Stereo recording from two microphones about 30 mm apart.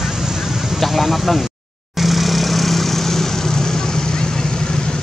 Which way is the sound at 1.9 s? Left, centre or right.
Centre.